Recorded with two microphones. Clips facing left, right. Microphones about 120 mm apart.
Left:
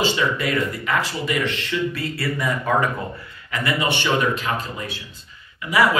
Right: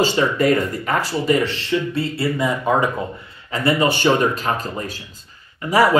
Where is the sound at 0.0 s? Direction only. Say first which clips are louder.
Right 5 dB; 40° right (ahead or behind); by 2.9 s 20° right (ahead or behind).